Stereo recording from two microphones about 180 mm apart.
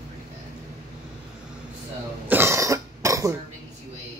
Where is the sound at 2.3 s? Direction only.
15° right (ahead or behind).